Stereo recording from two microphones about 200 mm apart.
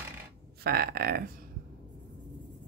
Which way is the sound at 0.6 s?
50° right (ahead or behind).